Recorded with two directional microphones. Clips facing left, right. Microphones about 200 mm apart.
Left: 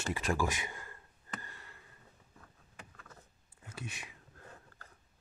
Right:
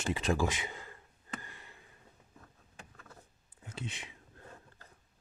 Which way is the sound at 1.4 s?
15° right (ahead or behind).